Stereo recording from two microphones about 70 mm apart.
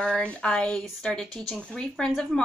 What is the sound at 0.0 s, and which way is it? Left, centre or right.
Speech, centre.